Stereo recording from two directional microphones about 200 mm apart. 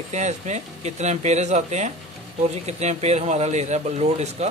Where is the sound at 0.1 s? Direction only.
35° right (ahead or behind).